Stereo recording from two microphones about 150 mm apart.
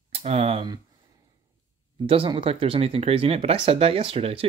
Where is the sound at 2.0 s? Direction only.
35° right (ahead or behind).